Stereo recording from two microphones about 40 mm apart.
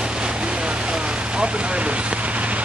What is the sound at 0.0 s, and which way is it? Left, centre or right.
Vehicle, right.